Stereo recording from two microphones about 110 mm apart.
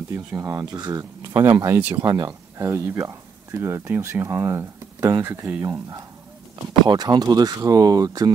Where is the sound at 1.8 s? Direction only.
15° right (ahead or behind).